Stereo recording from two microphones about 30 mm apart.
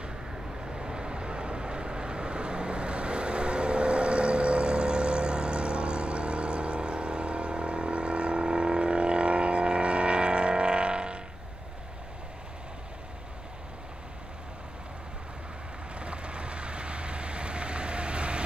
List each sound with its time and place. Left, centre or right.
0.7 s vehicle: right
16.0 s vehicle: right